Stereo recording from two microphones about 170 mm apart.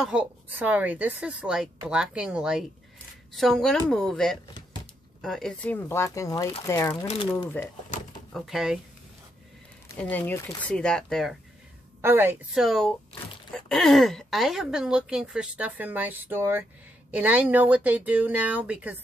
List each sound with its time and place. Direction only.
0.0 s a woman's voice: 5° right (ahead or behind); by 7.7 s 10° left (ahead or behind)
8.3 s speech: centre (ahead or behind)
9.9 s a woman's voice: 10° left (ahead or behind)
12.0 s a woman's voice: 15° right (ahead or behind)
12.5 s a woman's voice: centre (ahead or behind)